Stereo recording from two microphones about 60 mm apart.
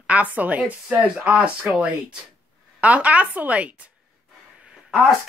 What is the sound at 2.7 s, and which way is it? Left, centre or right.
A woman's voice, right.